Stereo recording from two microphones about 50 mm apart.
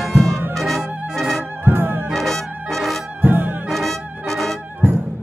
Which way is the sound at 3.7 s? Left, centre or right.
Centre.